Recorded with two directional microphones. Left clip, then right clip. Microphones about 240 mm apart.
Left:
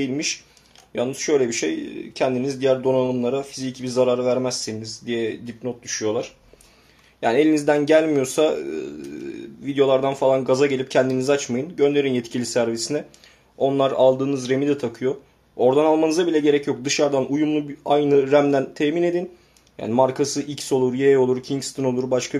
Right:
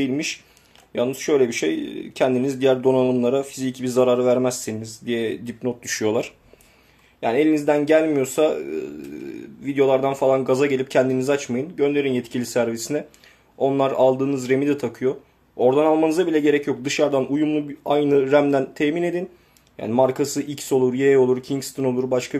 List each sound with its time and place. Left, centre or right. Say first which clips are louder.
0.0 s speech: right 1 dB; centre; by 6.3 s right
7.2 s speech: left 1 dB; centre